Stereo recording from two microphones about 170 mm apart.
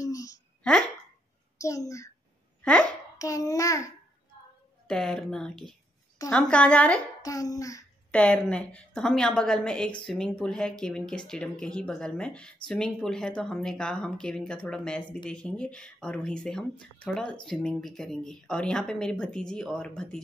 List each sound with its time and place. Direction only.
0.0 s a sound: 20° left (ahead or behind)
1.6 s a woman's voice: 20° left (ahead or behind)
2.6 s speech: 5° left (ahead or behind)
3.2 s child singing: 20° left (ahead or behind)
4.8 s a woman's voice: 5° left (ahead or behind)
7.2 s child singing: 20° left (ahead or behind)
8.1 s speech: 10° left (ahead or behind)